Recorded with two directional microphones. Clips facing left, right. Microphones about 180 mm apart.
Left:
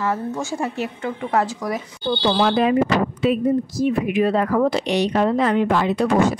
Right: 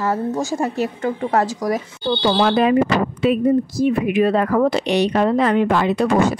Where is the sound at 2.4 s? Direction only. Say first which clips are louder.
Right 2 dB; 65° right (ahead or behind).